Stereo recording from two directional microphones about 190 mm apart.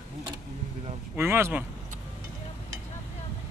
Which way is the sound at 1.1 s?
10° right (ahead or behind).